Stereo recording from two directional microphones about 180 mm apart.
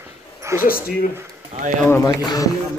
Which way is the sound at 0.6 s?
55° left (ahead or behind).